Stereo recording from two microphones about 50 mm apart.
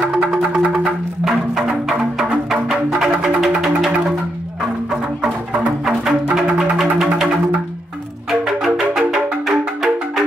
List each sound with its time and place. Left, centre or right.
0.1 s music: centre
6.3 s music: centre
8.3 s music: centre